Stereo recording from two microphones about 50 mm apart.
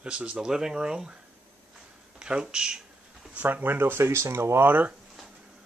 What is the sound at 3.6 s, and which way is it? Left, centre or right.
Speech, right.